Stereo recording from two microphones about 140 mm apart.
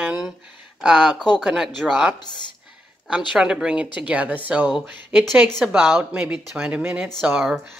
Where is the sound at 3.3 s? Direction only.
5° right (ahead or behind).